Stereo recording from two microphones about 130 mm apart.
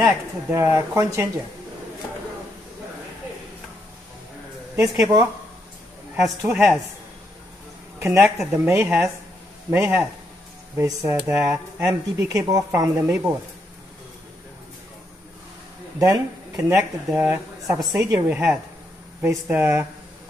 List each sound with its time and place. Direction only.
0.0 s speech: 20° right (ahead or behind)
4.7 s speech: 25° right (ahead or behind)
6.2 s a woman's voice: 5° right (ahead or behind)
8.0 s speech: 20° right (ahead or behind)
13.0 s speech: 15° right (ahead or behind)
16.0 s speech: 25° right (ahead or behind)
17.7 s speech: 30° right (ahead or behind)
18.2 s speech: 15° right (ahead or behind)